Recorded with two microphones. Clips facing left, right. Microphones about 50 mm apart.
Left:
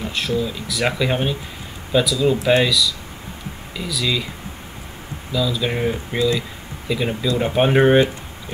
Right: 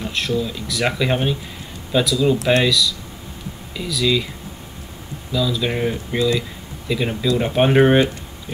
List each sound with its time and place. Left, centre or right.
0.0 s speech: centre
5.3 s speech: centre